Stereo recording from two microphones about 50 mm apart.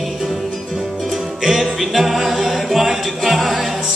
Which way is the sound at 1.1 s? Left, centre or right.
Centre.